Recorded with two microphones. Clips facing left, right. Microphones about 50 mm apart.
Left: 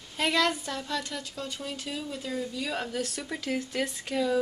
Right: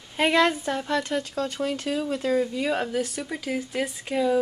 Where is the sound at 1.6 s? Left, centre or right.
Right.